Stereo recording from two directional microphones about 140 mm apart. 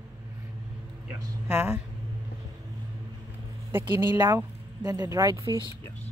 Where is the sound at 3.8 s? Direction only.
15° right (ahead or behind).